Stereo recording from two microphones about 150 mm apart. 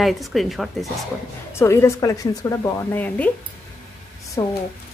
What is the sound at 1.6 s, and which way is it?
A woman's voice, 15° left (ahead or behind).